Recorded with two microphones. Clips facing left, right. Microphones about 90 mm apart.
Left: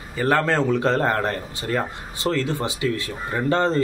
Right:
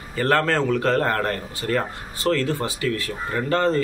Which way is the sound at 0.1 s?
15° left (ahead or behind).